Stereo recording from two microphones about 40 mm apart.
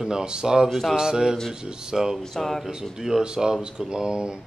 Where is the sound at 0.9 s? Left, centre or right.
Centre.